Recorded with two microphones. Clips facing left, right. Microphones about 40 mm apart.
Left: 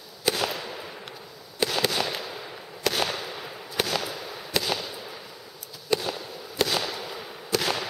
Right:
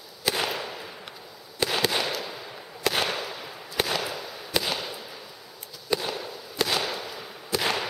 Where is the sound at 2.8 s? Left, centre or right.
Right.